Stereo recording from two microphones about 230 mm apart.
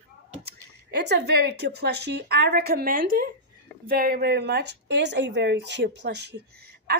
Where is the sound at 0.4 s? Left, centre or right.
Right.